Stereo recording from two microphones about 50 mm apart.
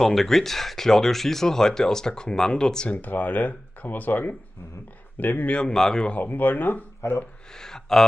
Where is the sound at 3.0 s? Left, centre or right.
Left.